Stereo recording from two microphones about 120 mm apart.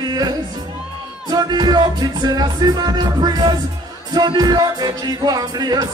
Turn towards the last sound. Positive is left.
turn(degrees=-35)  # may be behind; listen again after turning